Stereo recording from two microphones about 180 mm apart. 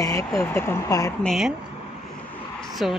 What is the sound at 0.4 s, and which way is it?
Speech, 10° left (ahead or behind).